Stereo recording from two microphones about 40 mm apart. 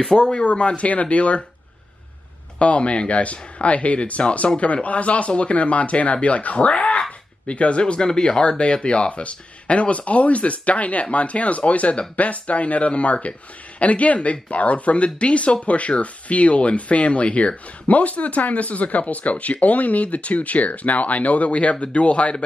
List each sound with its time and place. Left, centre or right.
0.0 s speech: centre
0.3 s speech: left
2.6 s speech: left